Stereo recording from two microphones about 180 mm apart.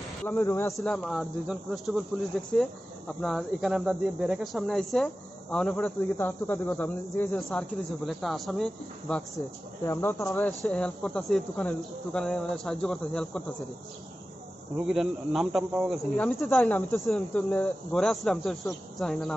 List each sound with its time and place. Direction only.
0.2 s speech: 10° left (ahead or behind)
9.8 s speech: 15° left (ahead or behind)
14.8 s speech: centre (ahead or behind)